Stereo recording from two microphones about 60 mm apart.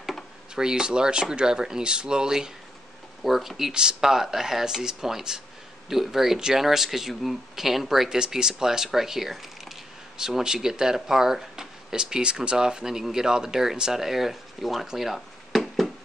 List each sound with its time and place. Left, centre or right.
0.6 s speech: centre